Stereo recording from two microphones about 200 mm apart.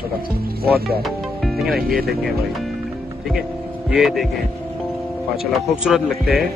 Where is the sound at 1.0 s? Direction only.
Centre (ahead or behind).